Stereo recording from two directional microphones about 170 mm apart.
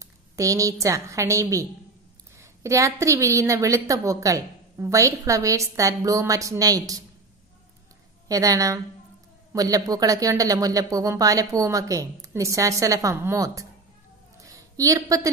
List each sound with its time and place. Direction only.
0.0 s a woman's voice: 20° right (ahead or behind)
8.3 s a woman's voice: 20° right (ahead or behind)
14.4 s a sound: 20° right (ahead or behind)